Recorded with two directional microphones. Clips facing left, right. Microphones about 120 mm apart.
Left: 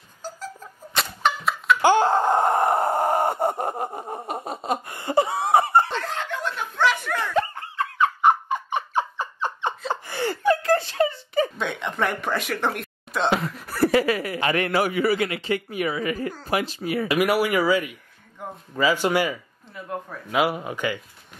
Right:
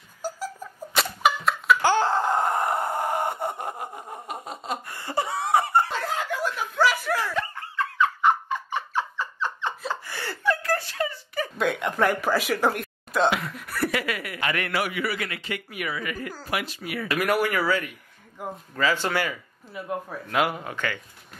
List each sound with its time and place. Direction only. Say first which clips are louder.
0.2 s a sound: right 3 dB; 10° right (ahead or behind)
1.8 s wail: left 4 dB; 15° left (ahead or behind)
2.7 s a sound: left 5 dB; 35° left (ahead or behind)
5.9 s snicker: even; 5° right (ahead or behind)
7.3 s laughter: left 6 dB; 30° left (ahead or behind)
8.0 s turkey: left 3 dB; 15° left (ahead or behind)
10.0 s gasp: left 7 dB; 20° left (ahead or behind)
11.5 s a sound: right 3 dB; centre (ahead or behind)
13.6 s a man's voice: left 7 dB; 35° left (ahead or behind)
17.1 s speech: left 2 dB; 10° left (ahead or behind)
18.4 s a man's voice: right 2 dB; 5° right (ahead or behind)
18.8 s speech: left 4 dB; 15° left (ahead or behind)
19.7 s speech: right 1 dB; 5° right (ahead or behind)
20.2 s speech: left 3 dB; 5° left (ahead or behind)